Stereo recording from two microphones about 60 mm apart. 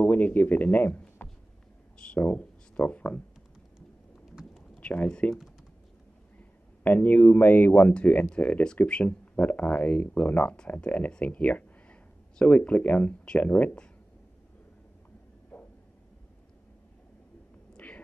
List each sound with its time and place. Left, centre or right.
0.0 s speech: left
4.7 s speech: left
6.8 s speech: left
7.9 s speech: left
17.7 s a sound: left